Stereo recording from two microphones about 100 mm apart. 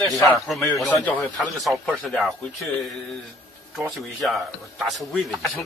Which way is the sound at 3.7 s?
Centre (ahead or behind).